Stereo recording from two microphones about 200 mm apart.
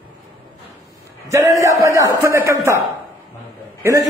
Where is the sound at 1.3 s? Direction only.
15° right (ahead or behind).